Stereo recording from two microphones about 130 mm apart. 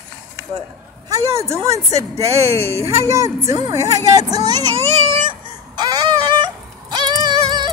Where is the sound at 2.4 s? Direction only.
50° right (ahead or behind).